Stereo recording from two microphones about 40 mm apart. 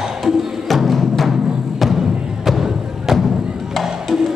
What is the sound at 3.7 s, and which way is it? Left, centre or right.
Music, centre.